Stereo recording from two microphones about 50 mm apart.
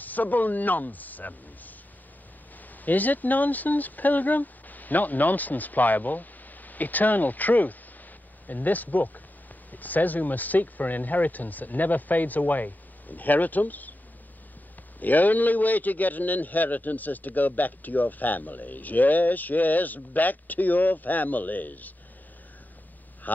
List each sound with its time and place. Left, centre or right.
0.0 s speech: left
2.8 s a man's voice: left
15.0 s a man's voice: left
23.3 s speech: left